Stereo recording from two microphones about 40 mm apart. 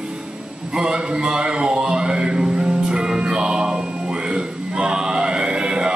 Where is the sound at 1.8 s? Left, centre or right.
Centre.